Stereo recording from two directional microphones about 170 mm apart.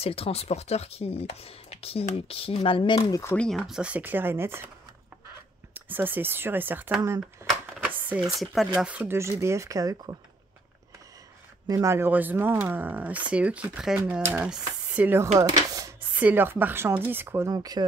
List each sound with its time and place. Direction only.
0.0 s speech: 35° left (ahead or behind); by 3.4 s 15° left (ahead or behind)
3.4 s speech: centre (ahead or behind)
5.8 s speech: 10° right (ahead or behind)
8.8 s speech: 10° right (ahead or behind)
11.6 s speech: 20° right (ahead or behind)